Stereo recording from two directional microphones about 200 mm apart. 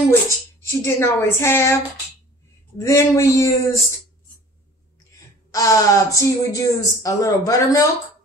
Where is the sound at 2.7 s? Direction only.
15° left (ahead or behind).